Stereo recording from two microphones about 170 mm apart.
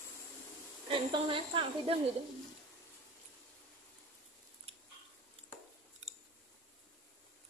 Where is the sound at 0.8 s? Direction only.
30° right (ahead or behind).